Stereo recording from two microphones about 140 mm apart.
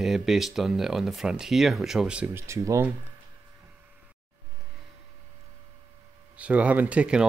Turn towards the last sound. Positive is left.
turn(degrees=-10)  # may be behind; listen again after turning